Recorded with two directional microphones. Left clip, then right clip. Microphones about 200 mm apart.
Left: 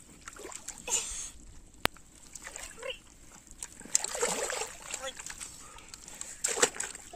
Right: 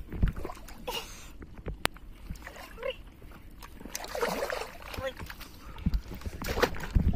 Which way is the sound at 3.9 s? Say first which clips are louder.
Even; 40° left (ahead or behind).